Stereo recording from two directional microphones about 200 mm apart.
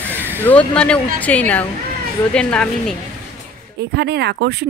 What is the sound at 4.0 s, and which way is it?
Speech, 55° right (ahead or behind).